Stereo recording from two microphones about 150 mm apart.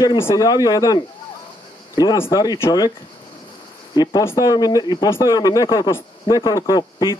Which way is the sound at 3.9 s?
25° left (ahead or behind).